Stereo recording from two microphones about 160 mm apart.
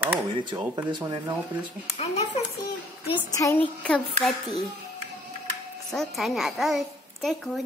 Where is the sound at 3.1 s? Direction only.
20° left (ahead or behind).